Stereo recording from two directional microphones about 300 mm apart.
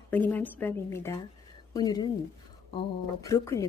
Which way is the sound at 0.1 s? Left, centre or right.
Centre.